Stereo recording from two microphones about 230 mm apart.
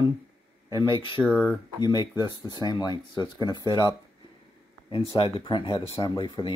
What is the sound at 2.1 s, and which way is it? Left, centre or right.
Speech, centre.